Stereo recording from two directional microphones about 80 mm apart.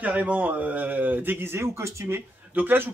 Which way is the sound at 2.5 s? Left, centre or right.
Right.